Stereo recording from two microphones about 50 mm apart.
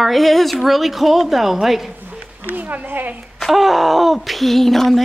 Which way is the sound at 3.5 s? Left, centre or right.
Centre.